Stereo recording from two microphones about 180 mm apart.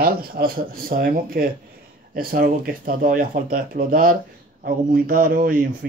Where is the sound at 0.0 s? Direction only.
55° right (ahead or behind).